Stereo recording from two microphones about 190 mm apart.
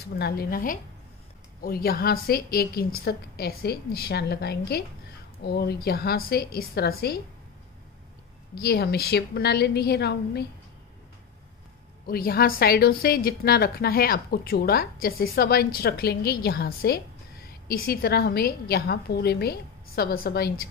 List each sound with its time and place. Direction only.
0.0 s a woman's voice: 55° left (ahead or behind)
8.5 s a woman's voice: 55° left (ahead or behind)
12.1 s a woman's voice: 50° left (ahead or behind)